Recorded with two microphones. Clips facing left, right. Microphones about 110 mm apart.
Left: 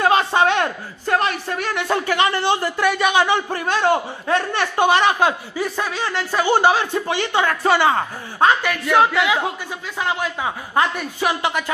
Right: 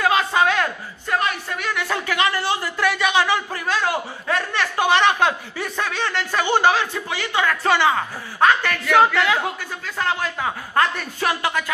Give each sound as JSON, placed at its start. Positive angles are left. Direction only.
{"t": 0.0, "sound": "a sound", "side_deg": 30}
{"t": 1.1, "sound": "speech", "side_deg": 35}
{"t": 8.6, "sound": "speech", "side_deg": 15}